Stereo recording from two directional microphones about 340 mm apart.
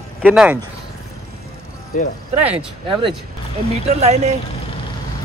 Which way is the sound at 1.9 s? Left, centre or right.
Left.